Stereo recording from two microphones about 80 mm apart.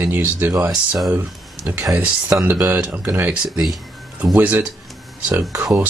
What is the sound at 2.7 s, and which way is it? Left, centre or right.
Speech, right.